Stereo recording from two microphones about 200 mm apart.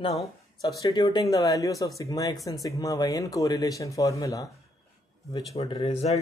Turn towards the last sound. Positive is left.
turn(degrees=30)  # may be behind; listen again after turning